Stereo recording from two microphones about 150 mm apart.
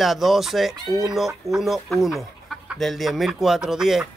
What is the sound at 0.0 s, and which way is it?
Speech, centre (ahead or behind).